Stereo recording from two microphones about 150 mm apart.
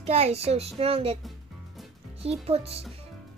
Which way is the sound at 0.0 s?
45° right (ahead or behind).